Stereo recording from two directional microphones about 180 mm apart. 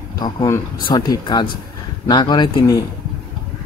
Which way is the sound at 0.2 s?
25° left (ahead or behind).